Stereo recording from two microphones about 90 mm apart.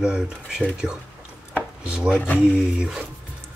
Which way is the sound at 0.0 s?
10° right (ahead or behind).